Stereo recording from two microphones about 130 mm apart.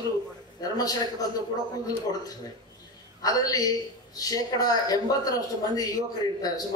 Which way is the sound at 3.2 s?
25° left (ahead or behind).